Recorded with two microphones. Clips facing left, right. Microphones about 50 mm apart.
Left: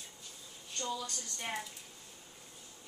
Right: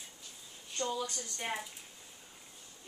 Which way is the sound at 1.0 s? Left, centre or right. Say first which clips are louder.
Right 3 dB; centre.